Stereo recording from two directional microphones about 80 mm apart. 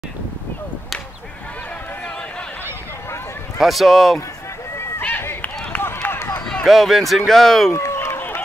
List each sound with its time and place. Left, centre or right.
3.5 s speech: centre
5.0 s run: left
6.0 s a sound: left
6.6 s speech: centre
7.7 s run: left